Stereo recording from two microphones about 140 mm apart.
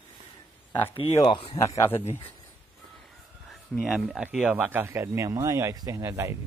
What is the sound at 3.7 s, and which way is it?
Speech, centre (ahead or behind).